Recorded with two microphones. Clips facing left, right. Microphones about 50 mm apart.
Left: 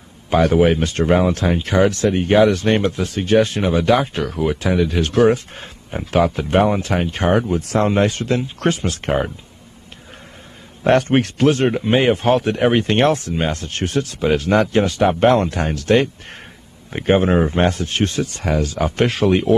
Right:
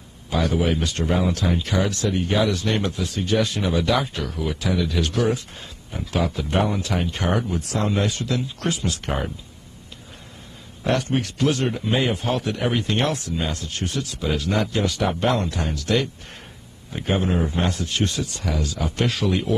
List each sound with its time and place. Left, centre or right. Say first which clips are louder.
0.3 s a man's voice: left 8 dB; left
10.8 s a man's voice: left 8 dB; left